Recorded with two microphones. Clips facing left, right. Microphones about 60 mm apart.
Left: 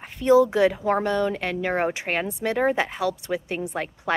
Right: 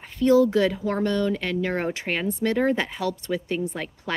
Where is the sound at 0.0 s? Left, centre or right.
Left.